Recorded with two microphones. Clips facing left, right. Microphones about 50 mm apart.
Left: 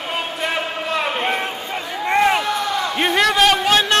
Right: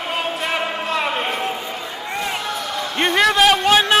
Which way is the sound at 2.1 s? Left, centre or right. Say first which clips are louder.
Left 10 dB; left.